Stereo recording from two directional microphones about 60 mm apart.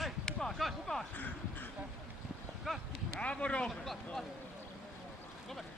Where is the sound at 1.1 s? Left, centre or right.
Left.